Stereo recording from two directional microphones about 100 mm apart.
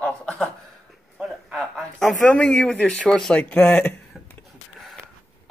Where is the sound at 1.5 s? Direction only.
Centre (ahead or behind).